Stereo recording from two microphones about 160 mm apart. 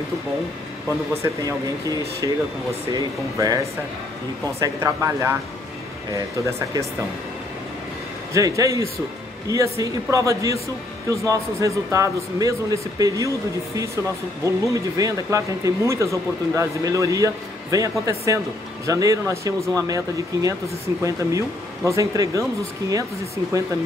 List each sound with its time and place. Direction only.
1.1 s speech: 20° right (ahead or behind)
4.6 s speech: 20° right (ahead or behind)
6.4 s speech: 20° right (ahead or behind)
8.3 s speech: 20° right (ahead or behind)
14.4 s speech: 20° right (ahead or behind)